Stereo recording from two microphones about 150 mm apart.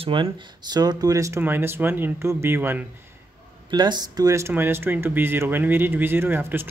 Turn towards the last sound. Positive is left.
turn(degrees=-15)  # may be behind; listen again after turning